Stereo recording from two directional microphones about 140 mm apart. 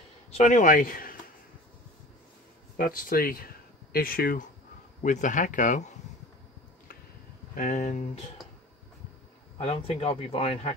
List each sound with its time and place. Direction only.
0.3 s speech: 65° left (ahead or behind); by 1.1 s 85° left
2.8 s speech: 85° left
5.0 s speech: 65° left (ahead or behind)
7.5 s speech: 65° left (ahead or behind)
9.6 s speech: 45° left (ahead or behind)